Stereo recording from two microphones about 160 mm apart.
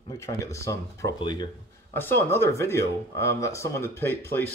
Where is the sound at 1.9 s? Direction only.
15° left (ahead or behind).